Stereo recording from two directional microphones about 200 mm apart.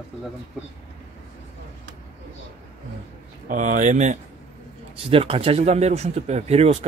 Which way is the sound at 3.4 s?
40° right (ahead or behind).